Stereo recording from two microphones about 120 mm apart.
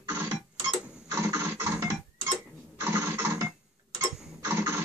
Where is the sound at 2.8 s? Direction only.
20° right (ahead or behind).